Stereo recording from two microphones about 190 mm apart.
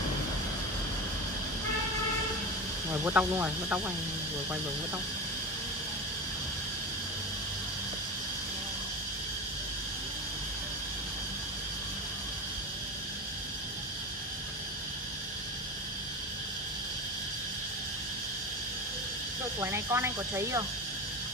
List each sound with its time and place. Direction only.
2.9 s speech: 10° right (ahead or behind)
19.6 s speech: 15° right (ahead or behind)